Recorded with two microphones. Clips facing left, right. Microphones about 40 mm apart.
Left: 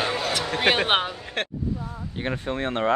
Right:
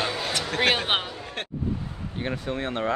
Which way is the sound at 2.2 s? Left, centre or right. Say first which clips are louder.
Left 2 dB; centre.